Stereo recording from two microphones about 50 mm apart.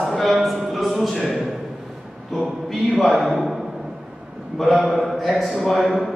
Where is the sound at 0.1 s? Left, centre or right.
Centre.